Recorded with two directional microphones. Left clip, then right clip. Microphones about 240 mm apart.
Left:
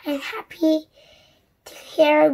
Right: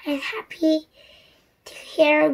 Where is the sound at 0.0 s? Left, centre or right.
Centre.